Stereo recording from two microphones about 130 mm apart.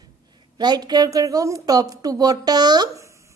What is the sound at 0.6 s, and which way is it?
A woman's voice, 35° right (ahead or behind).